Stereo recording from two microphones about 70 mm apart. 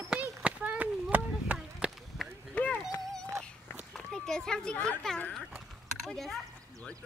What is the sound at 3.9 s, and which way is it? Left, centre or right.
Children playing, centre.